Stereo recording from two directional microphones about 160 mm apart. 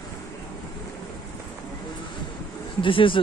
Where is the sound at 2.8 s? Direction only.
30° left (ahead or behind).